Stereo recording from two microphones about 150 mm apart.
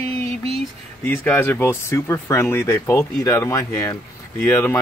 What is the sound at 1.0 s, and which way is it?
Speech, 15° left (ahead or behind).